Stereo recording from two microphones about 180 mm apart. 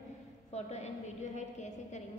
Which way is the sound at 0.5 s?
40° left (ahead or behind).